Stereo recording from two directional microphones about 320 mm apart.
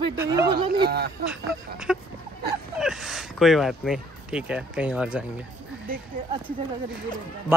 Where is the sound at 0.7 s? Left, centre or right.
Right.